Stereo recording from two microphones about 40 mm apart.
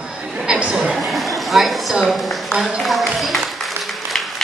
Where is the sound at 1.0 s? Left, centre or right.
Centre.